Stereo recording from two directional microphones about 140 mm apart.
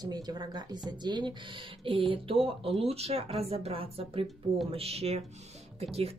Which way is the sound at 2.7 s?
45° right (ahead or behind).